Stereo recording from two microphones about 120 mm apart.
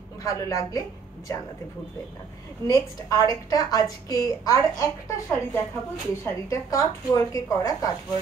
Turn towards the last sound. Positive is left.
turn(degrees=30)  # may be behind; listen again after turning